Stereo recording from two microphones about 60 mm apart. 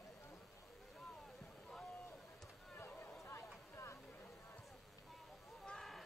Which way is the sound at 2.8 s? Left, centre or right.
Left.